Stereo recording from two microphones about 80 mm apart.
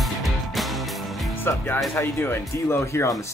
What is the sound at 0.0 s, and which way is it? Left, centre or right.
Music, centre.